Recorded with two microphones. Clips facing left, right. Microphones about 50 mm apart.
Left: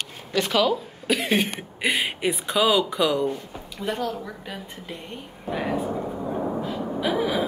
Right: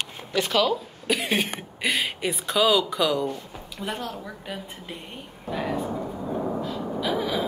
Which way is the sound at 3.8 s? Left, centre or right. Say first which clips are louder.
Left 4 dB; centre.